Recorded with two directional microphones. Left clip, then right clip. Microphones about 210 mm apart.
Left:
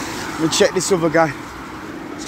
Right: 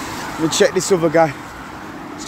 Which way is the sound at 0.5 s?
15° right (ahead or behind).